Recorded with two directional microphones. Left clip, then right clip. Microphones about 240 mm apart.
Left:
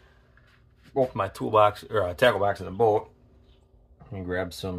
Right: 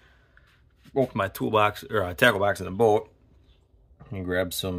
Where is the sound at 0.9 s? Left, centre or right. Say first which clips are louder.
Even; right.